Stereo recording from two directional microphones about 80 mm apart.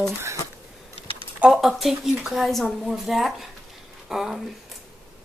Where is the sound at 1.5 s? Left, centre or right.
Centre.